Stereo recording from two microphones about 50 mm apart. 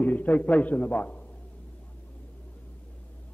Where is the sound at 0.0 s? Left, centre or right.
Left.